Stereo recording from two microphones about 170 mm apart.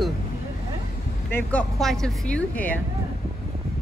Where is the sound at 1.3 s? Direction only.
10° left (ahead or behind).